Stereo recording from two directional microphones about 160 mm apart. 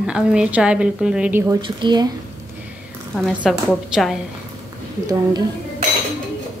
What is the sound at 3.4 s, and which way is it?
Speech, centre (ahead or behind).